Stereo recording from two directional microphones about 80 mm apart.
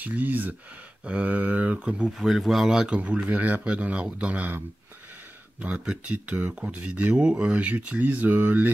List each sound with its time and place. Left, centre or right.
0.0 s speech: right
2.1 s speech: centre
3.3 s speech: right